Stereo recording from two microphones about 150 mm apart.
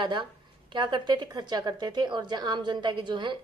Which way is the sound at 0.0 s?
35° right (ahead or behind).